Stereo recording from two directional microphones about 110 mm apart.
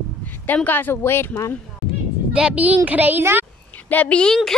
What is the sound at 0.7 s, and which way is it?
Speech, 20° left (ahead or behind).